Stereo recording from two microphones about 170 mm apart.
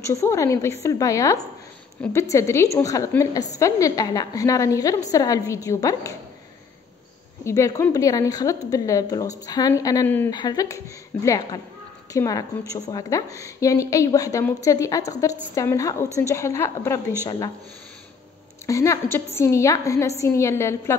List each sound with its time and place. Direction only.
0.0 s a woman's voice: 15° left (ahead or behind)
7.4 s a woman's voice: 20° left (ahead or behind)
10.3 s a woman's voice: 25° left (ahead or behind)
18.7 s a woman's voice: 15° left (ahead or behind)